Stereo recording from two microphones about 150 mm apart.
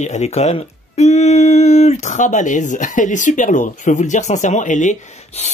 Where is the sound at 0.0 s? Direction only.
50° left (ahead or behind).